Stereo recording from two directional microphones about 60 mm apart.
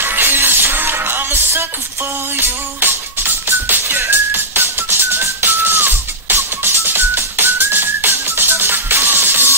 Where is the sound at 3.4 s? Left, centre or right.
Right.